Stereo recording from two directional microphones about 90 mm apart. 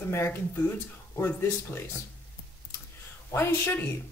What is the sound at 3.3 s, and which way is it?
Speech, 25° left (ahead or behind).